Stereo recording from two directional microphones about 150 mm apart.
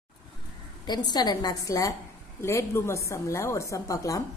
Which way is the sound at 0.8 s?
30° left (ahead or behind).